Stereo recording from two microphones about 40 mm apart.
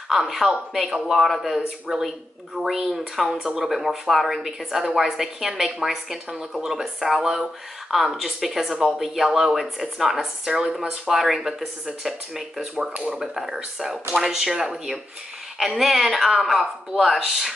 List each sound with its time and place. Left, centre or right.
0.1 s speech: centre
3.3 s speech: centre
3.6 s speech: centre
11.1 s speech: centre
12.9 s speech: right
13.2 s speech: centre